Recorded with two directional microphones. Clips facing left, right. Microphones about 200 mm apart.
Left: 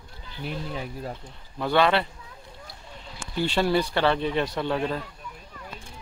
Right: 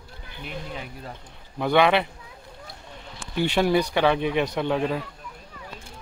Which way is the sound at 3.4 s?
15° right (ahead or behind).